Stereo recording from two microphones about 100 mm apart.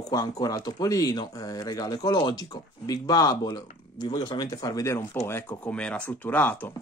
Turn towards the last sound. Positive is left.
turn(degrees=20)  # may be behind; listen again after turning